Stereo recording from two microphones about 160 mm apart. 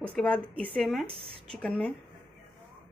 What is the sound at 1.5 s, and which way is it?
Speech, 5° left (ahead or behind).